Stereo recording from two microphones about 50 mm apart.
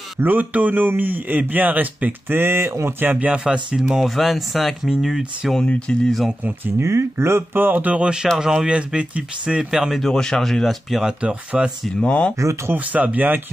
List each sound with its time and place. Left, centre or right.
0.2 s speech: right
2.2 s speech: right
3.3 s speech: right
4.0 s speech: centre
5.6 s speech: centre
6.0 s speech: centre
6.8 s speech: right
7.6 s speech: right
8.0 s speech: centre
9.9 s speech: centre
11.1 s speech: right
12.0 s speech: left
12.7 s speech: right